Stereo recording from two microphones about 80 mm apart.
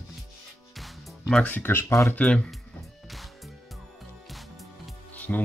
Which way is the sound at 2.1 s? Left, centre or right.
Centre.